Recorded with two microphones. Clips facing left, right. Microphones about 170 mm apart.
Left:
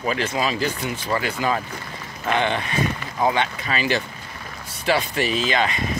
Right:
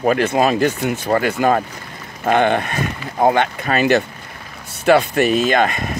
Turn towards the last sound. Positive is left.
turn(degrees=-50)  # may be behind; listen again after turning